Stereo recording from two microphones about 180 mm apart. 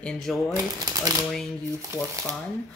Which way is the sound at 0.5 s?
20° right (ahead or behind).